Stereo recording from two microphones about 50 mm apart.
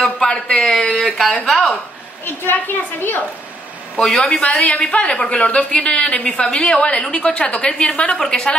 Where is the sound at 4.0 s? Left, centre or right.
Centre.